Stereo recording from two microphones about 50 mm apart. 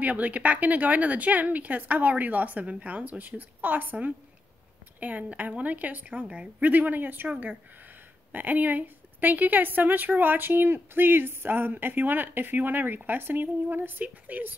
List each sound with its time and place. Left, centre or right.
0.0 s a woman's voice: right
6.6 s a woman's voice: right